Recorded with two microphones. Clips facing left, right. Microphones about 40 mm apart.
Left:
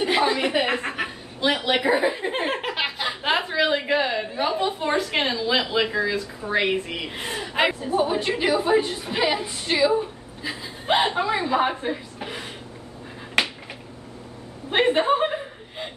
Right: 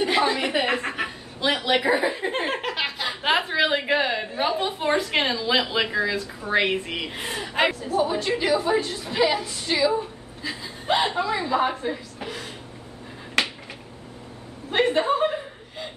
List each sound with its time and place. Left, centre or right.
0.0 s chuckle: centre
3.2 s a sound: centre
4.8 s a woman's voice: centre
7.8 s a woman's voice: centre
13.4 s finger snapping: centre
14.7 s a woman's voice: left